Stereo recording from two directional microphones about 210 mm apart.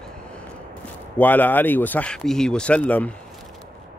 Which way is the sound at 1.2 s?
10° left (ahead or behind).